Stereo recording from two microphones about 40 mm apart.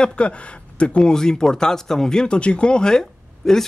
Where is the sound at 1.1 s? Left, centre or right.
Centre.